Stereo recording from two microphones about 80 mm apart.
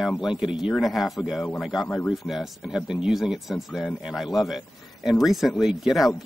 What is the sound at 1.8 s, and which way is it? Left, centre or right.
Speech, left.